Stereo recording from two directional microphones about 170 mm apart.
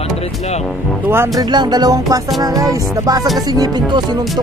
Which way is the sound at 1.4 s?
25° right (ahead or behind).